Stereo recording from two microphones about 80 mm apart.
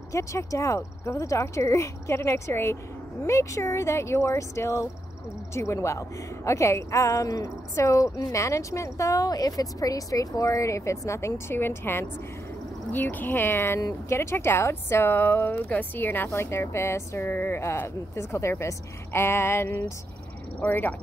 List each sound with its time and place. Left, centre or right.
0.1 s a woman's voice: left
13.7 s speech: left
14.1 s a woman's voice: left